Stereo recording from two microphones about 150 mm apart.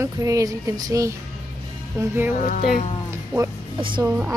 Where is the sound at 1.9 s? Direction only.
15° right (ahead or behind).